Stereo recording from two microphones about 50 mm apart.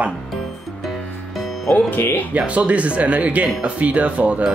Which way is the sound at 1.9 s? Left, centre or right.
Left.